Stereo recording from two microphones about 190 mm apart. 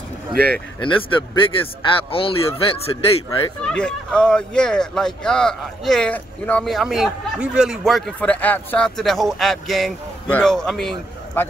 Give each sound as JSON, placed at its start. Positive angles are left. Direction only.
{"t": 0.3, "sound": "speech", "side_deg": -55}
{"t": 0.7, "sound": "speech", "side_deg": 25}
{"t": 3.6, "sound": "speech", "side_deg": 5}